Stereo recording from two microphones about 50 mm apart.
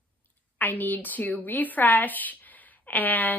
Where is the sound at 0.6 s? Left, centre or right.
Left.